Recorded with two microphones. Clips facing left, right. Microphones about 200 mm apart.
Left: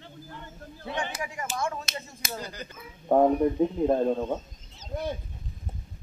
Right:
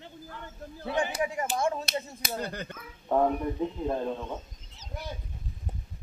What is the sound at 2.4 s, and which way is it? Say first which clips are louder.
Speech: right 4 dB; 60° right (ahead or behind).